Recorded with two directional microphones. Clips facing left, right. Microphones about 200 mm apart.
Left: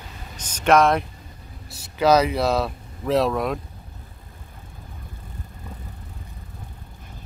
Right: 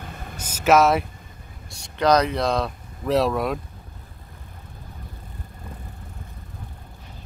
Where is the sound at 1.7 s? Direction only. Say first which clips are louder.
Left 1 dB; 5° left (ahead or behind).